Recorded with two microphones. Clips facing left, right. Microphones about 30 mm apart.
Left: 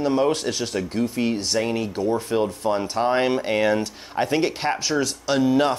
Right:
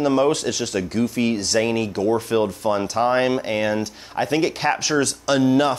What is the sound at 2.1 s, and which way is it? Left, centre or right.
Speech, right.